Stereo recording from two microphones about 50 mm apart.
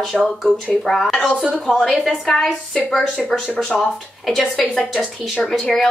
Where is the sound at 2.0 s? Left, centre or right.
Centre.